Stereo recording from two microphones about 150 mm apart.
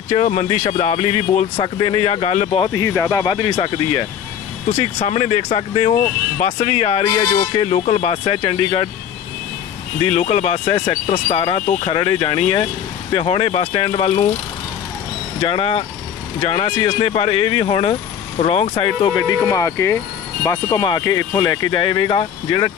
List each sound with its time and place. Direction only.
0.1 s speech: 50° left (ahead or behind)
1.6 s speech: 35° left (ahead or behind)
2.6 s speech: 20° left (ahead or behind)
4.6 s speech: 40° left (ahead or behind)
10.0 s speech: 40° left (ahead or behind)
15.4 s speech: 40° left (ahead or behind)